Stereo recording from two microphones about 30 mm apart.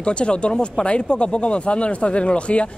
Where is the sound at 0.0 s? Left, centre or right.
Left.